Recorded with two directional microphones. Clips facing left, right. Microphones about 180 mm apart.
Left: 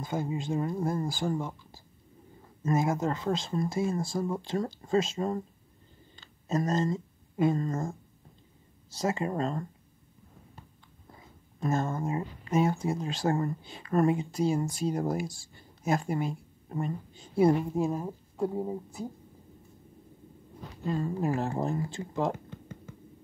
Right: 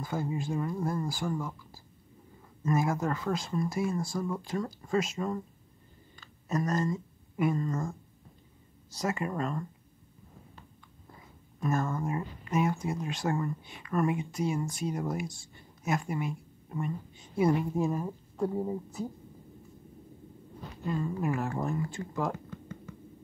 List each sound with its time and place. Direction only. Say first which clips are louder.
0.0 s speech: left 1 dB; 20° left (ahead or behind)
8.9 s speech: left 2 dB; 25° left (ahead or behind)
11.6 s speech: left 1 dB; 25° left (ahead or behind)
17.7 s speech: left 1 dB; 15° left (ahead or behind)
20.8 s speech: left 2 dB; 35° left (ahead or behind)